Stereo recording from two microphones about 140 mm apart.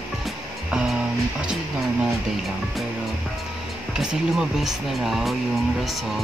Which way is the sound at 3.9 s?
Centre (ahead or behind).